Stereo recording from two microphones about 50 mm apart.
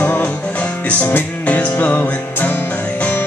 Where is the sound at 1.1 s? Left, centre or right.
Left.